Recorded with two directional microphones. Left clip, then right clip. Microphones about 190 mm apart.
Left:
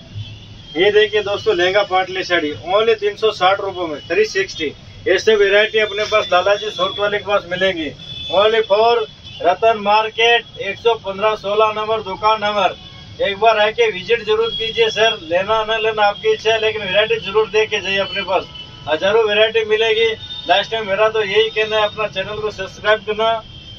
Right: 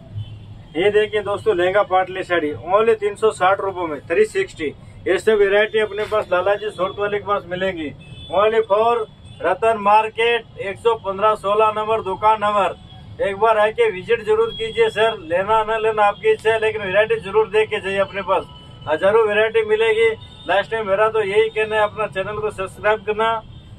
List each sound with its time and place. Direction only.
0.7 s a man's voice: 5° right (ahead or behind)